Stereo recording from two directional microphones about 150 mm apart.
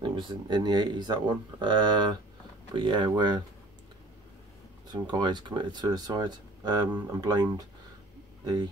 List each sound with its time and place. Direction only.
0.0 s speech: 35° right (ahead or behind)
4.9 s speech: 30° right (ahead or behind)